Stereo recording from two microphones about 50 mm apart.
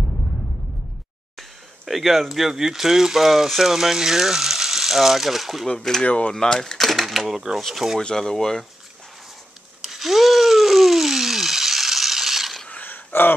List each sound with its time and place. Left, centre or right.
1.9 s speech: centre
5.7 s speech: centre
6.0 s speech: left
6.3 s speech: centre
8.0 s speech: centre
9.8 s a sound: centre
12.6 s a sound: left